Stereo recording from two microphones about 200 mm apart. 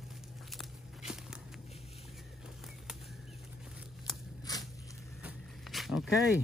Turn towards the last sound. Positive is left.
turn(degrees=0)  # may be behind; listen again after turning